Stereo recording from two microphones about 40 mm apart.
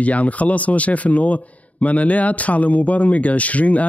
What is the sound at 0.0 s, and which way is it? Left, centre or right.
A man's voice, left.